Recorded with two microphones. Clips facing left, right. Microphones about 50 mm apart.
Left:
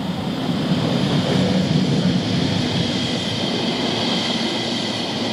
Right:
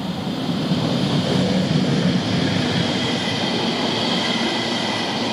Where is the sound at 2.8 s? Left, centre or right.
Right.